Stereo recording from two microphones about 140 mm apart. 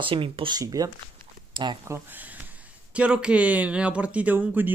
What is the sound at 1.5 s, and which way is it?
Speech, 35° right (ahead or behind).